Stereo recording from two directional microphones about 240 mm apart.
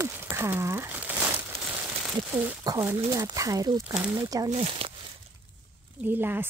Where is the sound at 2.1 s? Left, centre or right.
Centre.